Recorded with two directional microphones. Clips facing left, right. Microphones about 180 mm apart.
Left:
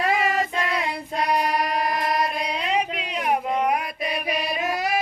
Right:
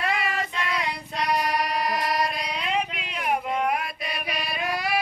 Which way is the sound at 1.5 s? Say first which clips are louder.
Left 2 dB; 50° left (ahead or behind).